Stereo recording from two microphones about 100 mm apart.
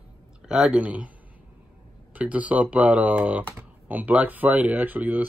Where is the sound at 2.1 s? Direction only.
15° right (ahead or behind).